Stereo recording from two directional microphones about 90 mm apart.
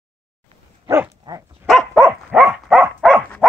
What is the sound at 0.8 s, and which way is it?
Speech, 25° right (ahead or behind).